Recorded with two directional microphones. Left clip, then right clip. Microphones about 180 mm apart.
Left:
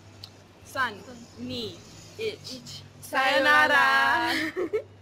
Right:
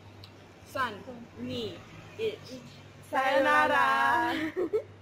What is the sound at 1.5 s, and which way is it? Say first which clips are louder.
Speech: left 2 dB; 20° left (ahead or behind).